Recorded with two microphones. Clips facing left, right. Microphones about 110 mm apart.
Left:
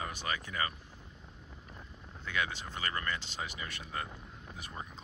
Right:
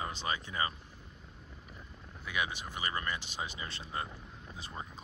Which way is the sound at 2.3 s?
15° right (ahead or behind).